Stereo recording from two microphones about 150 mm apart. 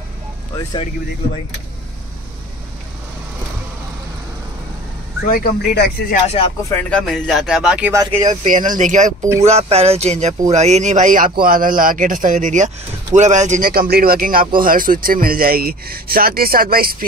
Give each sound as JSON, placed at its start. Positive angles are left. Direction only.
{"t": 5.3, "sound": "speech", "side_deg": 90}
{"t": 6.2, "sound": "speech", "side_deg": 40}
{"t": 6.6, "sound": "speech", "side_deg": 15}
{"t": 8.1, "sound": "speech", "side_deg": -50}
{"t": 9.4, "sound": "a man's voice", "side_deg": -45}